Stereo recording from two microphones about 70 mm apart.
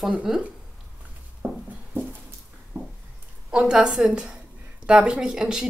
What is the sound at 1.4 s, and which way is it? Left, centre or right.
Music, centre.